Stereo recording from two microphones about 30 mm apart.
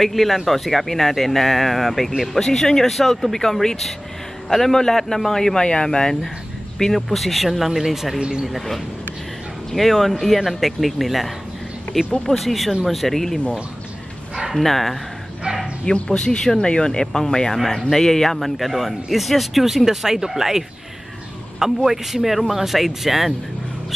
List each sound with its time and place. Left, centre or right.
0.0 s speech: centre
4.5 s speech: centre
5.6 s speech: left
6.9 s speech: centre
8.2 s speech: right
8.5 s speech: centre
14.5 s speech: centre
15.8 s speech: left
17.6 s speech: centre
18.6 s speech: centre
19.6 s speech: centre